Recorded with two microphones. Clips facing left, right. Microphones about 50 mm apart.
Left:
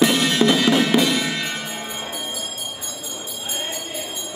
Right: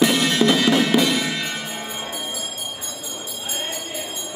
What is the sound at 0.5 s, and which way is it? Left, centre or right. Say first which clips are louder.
Music: even; centre.